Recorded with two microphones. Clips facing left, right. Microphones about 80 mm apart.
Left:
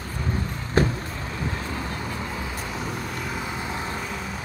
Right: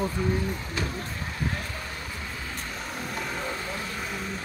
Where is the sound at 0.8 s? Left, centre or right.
Left.